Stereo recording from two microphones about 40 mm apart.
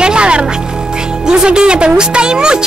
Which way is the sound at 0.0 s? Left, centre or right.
Right.